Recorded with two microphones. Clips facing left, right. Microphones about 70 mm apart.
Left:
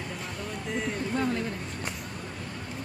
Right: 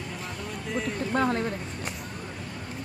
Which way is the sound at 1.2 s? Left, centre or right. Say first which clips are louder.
Right 4 dB; right.